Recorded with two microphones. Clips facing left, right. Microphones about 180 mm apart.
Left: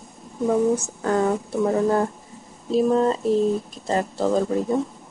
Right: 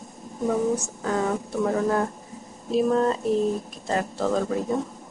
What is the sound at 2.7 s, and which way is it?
Speech, centre (ahead or behind).